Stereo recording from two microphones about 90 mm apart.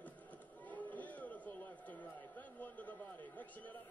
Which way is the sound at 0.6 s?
20° left (ahead or behind).